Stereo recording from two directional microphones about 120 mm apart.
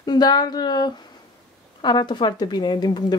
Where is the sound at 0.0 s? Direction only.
35° left (ahead or behind).